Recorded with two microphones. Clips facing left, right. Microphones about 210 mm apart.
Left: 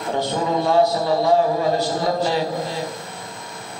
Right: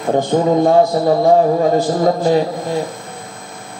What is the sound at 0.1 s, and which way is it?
A man's voice, 50° right (ahead or behind).